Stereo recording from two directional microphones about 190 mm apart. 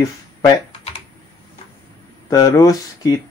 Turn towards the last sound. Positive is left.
turn(degrees=20)  # may be behind; listen again after turning